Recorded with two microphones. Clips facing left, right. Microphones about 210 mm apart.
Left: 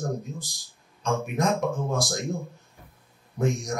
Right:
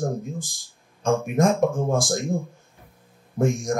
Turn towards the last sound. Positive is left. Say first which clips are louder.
# right 4 dB
turn(degrees=-50)  # may be behind; listen again after turning